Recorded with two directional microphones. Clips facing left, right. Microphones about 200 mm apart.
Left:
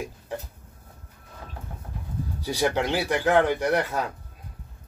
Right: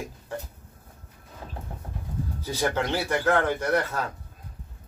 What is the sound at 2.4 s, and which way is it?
Speech, 15° left (ahead or behind).